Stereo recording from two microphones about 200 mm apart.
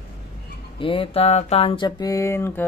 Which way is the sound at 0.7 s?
25° left (ahead or behind).